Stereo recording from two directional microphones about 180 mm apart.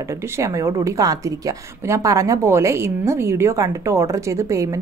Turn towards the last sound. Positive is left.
turn(degrees=-15)  # may be behind; listen again after turning